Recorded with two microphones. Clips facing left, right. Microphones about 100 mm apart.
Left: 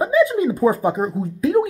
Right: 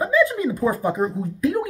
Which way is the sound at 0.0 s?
20° left (ahead or behind).